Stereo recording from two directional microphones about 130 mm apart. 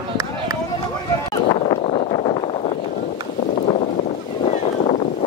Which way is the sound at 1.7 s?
50° left (ahead or behind).